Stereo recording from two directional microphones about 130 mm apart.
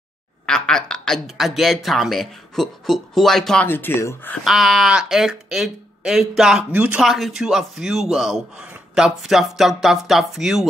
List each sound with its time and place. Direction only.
0.5 s speech: 5° left (ahead or behind)
3.6 s speech: 15° left (ahead or behind)
4.5 s speech: centre (ahead or behind)